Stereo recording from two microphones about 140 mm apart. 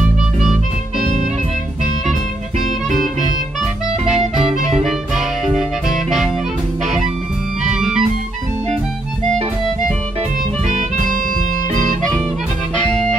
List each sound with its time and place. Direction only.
4.8 s music: centre (ahead or behind)
7.7 s music: 5° right (ahead or behind)
11.7 s music: 65° right (ahead or behind)
12.8 s music: 5° left (ahead or behind)